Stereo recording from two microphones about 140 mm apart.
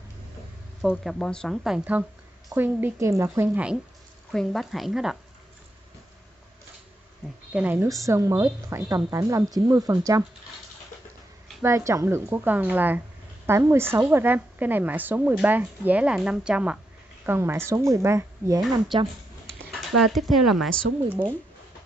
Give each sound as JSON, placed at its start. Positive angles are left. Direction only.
{"t": 0.8, "sound": "a woman's voice", "side_deg": 0}
{"t": 4.3, "sound": "speech", "side_deg": 0}
{"t": 7.5, "sound": "a woman's voice", "side_deg": -10}
{"t": 11.6, "sound": "a woman's voice", "side_deg": -20}
{"t": 17.3, "sound": "a woman's voice", "side_deg": -20}
{"t": 19.7, "sound": "speech", "side_deg": 0}